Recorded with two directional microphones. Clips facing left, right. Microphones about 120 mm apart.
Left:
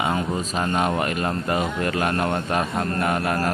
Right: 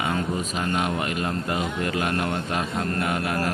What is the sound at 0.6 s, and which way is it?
A man's voice, 40° left (ahead or behind).